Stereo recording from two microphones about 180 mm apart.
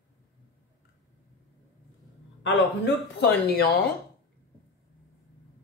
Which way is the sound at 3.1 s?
65° left (ahead or behind).